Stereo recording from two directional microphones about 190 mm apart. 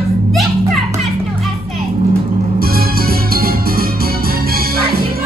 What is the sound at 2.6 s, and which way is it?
Music, 50° right (ahead or behind).